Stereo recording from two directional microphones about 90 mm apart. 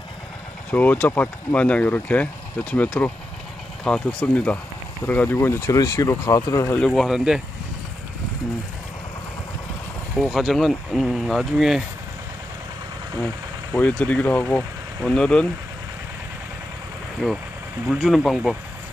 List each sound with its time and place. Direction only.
0.7 s speech: 20° left (ahead or behind)
5.0 s speech: 20° left (ahead or behind)
6.9 s speech: 5° right (ahead or behind)
10.1 s speech: centre (ahead or behind)
13.7 s speech: 15° left (ahead or behind)
17.2 s speech: 5° right (ahead or behind)